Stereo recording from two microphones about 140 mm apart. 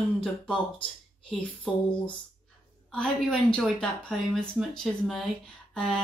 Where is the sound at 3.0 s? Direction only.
5° left (ahead or behind).